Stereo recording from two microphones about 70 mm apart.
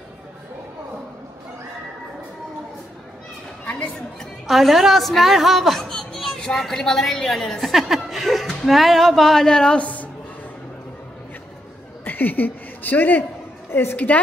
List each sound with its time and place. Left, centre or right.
4.5 s a woman's voice: centre
12.0 s a sound: left
13.7 s a woman's voice: left
13.9 s a woman's voice: left